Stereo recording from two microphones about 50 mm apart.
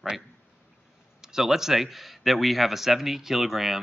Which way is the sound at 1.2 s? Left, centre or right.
Centre.